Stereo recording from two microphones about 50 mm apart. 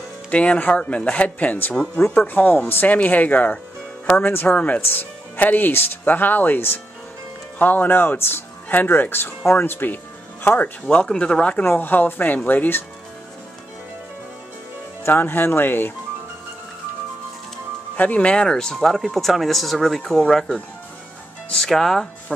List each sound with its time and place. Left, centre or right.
0.3 s speech: left
2.1 s speech: left
11.0 s speech: centre
11.6 s speech: left
15.0 s speech: left
17.9 s speech: left
18.3 s speech: centre
18.8 s speech: centre
21.6 s speech: centre